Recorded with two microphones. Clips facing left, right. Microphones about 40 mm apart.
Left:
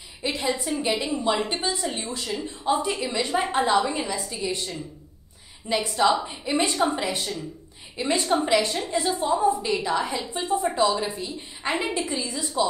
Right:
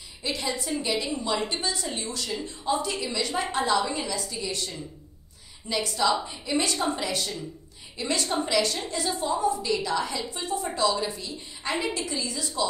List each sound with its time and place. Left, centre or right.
0.2 s a woman's voice: left